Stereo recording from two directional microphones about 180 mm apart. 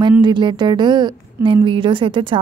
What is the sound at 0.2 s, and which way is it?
A woman's voice, 25° right (ahead or behind).